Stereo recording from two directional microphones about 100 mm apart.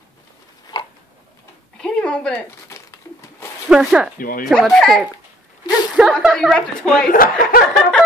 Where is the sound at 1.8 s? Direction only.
10° left (ahead or behind).